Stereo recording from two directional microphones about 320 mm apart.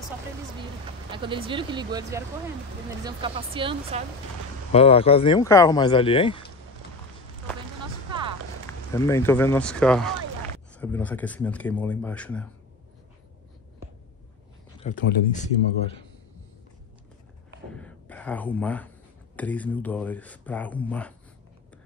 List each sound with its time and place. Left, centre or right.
1.1 s speech: centre
4.7 s speech: centre
8.9 s speech: centre
14.8 s speech: left
17.7 s gasp: centre
19.3 s speech: centre